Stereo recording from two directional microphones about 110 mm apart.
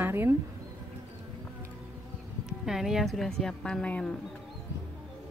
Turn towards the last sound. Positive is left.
turn(degrees=10)  # may be behind; listen again after turning